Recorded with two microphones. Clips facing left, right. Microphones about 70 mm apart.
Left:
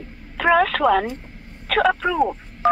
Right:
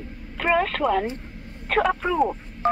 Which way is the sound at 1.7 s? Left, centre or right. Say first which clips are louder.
Left 2 dB; left.